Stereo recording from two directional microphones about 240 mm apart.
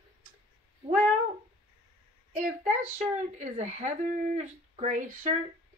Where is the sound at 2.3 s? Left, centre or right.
Right.